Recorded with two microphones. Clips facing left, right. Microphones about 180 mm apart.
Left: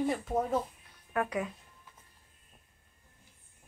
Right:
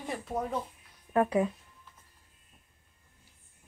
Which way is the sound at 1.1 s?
30° right (ahead or behind).